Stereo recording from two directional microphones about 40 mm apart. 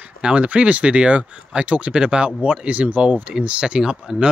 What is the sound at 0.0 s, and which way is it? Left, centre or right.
Speech, right.